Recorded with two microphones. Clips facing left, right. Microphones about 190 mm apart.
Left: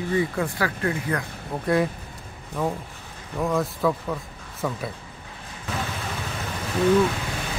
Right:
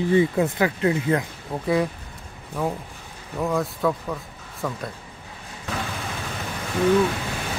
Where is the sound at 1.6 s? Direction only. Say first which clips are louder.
Even; centre (ahead or behind).